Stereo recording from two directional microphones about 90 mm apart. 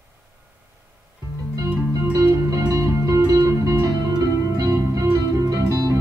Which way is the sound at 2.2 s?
40° right (ahead or behind).